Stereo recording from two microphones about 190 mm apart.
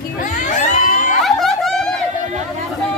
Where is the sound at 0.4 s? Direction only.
40° left (ahead or behind).